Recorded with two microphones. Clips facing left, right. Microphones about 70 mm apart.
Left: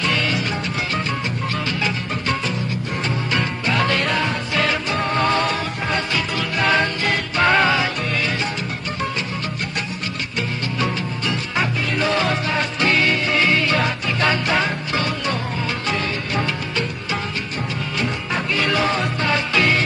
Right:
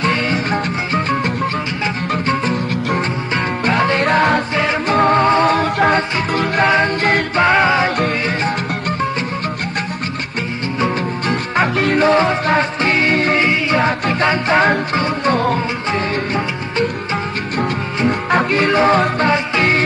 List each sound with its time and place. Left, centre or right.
0.0 s music: right
3.3 s music: right
5.2 s music: right
5.9 s music: right
7.3 s music: right
11.2 s music: right
15.3 s music: right
18.3 s music: right
19.3 s music: right